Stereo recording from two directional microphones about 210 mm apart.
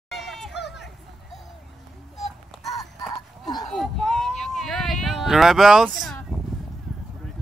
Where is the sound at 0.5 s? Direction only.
55° left (ahead or behind).